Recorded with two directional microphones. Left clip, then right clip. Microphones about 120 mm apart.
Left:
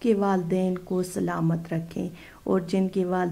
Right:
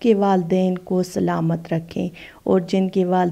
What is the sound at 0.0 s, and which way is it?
A woman's voice, 30° right (ahead or behind).